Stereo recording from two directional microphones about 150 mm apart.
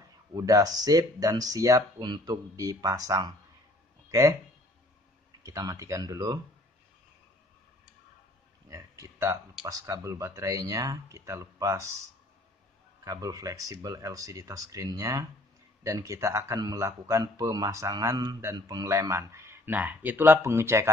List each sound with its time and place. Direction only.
0.3 s speech: 25° right (ahead or behind)
5.4 s speech: 25° right (ahead or behind)
8.6 s speech: 20° right (ahead or behind)
13.0 s speech: 20° right (ahead or behind)